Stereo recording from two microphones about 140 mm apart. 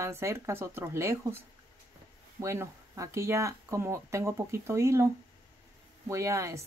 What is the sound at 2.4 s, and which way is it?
Speech, 20° right (ahead or behind).